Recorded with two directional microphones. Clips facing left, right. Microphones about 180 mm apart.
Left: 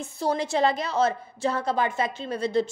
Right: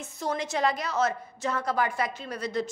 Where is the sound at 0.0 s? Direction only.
30° left (ahead or behind).